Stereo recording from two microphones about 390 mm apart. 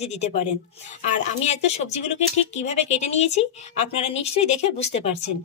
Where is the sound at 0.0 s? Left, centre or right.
Centre.